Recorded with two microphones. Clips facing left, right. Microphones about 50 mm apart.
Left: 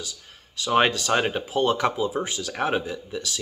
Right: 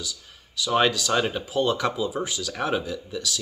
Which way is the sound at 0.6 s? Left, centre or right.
Left.